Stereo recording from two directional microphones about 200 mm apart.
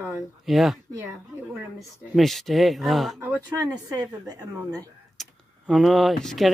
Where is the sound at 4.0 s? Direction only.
20° right (ahead or behind).